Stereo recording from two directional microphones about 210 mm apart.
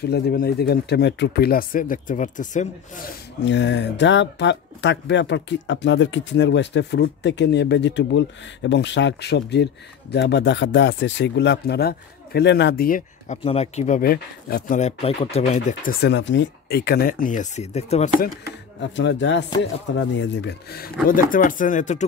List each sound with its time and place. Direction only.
0.0 s speech: 50° left (ahead or behind)
3.4 s speech: 60° left (ahead or behind); by 13.4 s 40° left (ahead or behind)
13.4 s speech: 30° left (ahead or behind)
18.8 s speech: 60° left (ahead or behind); by 22.0 s 35° left (ahead or behind)